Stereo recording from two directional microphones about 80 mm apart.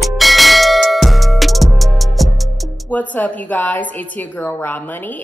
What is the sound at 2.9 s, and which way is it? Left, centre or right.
A woman's voice, centre.